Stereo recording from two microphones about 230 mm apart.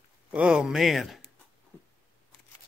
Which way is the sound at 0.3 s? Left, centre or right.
Centre.